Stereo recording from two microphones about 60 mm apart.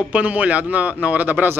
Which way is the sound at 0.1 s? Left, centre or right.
Right.